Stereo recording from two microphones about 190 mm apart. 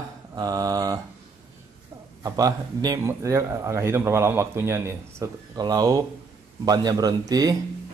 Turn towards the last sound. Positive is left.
turn(degrees=-20)  # may be behind; listen again after turning